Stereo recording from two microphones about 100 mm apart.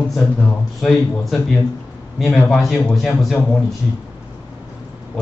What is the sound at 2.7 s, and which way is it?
Speech, centre (ahead or behind).